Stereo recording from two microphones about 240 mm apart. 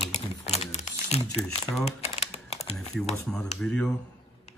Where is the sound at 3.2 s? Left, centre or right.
Centre.